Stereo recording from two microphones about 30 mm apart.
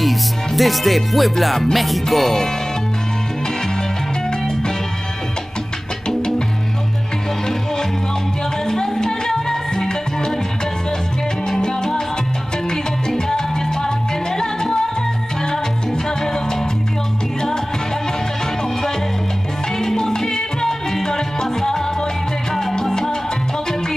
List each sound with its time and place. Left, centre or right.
0.0 s music: centre
6.0 s music: left
8.6 s music: centre
11.6 s salsa music: left
13.1 s salsa music: centre
19.8 s music: centre